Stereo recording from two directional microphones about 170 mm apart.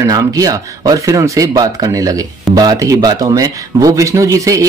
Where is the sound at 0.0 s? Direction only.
20° right (ahead or behind).